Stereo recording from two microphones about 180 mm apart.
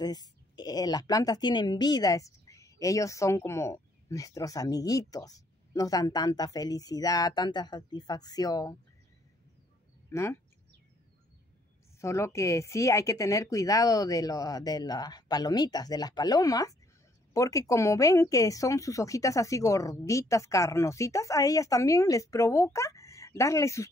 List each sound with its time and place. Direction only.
0.0 s speech: 20° left (ahead or behind)
10.1 s speech: 15° left (ahead or behind)
12.0 s speech: 15° left (ahead or behind)